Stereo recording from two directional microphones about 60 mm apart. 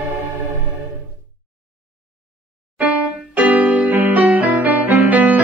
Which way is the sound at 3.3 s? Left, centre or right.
Right.